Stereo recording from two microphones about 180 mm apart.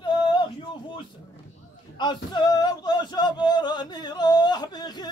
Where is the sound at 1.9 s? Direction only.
25° left (ahead or behind).